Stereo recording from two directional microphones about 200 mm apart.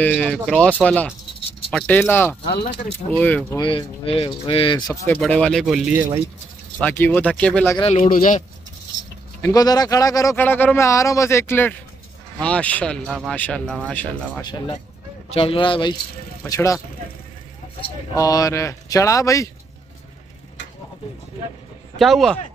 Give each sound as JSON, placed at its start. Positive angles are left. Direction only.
{"t": 0.0, "sound": "speech", "side_deg": 5}
{"t": 3.5, "sound": "speech", "side_deg": 25}
{"t": 5.1, "sound": "speech", "side_deg": 5}
{"t": 6.8, "sound": "speech", "side_deg": 10}
{"t": 7.8, "sound": "speech", "side_deg": 40}
{"t": 9.4, "sound": "speech", "side_deg": 20}
{"t": 14.4, "sound": "speech", "side_deg": 20}
{"t": 18.1, "sound": "speech", "side_deg": 15}
{"t": 21.9, "sound": "speech", "side_deg": 0}